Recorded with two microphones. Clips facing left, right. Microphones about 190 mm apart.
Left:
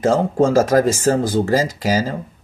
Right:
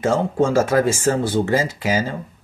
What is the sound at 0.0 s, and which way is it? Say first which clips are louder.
Speech: left 3 dB; 40° left (ahead or behind).